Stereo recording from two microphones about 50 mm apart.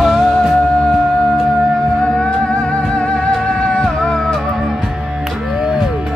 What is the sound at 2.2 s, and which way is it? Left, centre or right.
Music, left.